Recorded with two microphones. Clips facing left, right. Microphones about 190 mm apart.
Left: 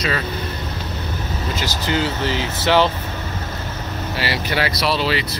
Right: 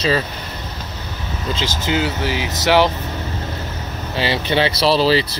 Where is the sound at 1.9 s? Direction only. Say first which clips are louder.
Right 1 dB; 15° right (ahead or behind).